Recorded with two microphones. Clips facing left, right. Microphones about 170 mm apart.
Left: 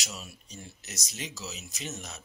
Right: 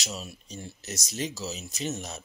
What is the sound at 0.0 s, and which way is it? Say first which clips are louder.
Speech: right 5 dB; 25° right (ahead or behind).